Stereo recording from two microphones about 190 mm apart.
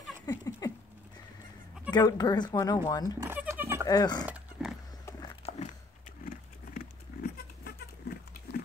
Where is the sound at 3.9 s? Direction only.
20° left (ahead or behind).